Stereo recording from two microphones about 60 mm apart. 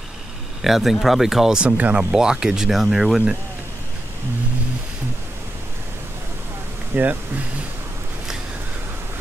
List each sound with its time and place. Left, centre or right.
0.6 s speech: centre
1.8 s speech: right
2.1 s speech: centre
6.9 s speech: right